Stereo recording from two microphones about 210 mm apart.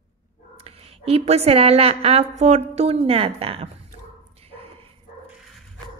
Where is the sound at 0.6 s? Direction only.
30° right (ahead or behind).